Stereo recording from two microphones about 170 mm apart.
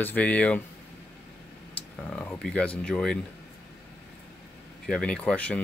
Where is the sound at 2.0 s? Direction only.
5° left (ahead or behind).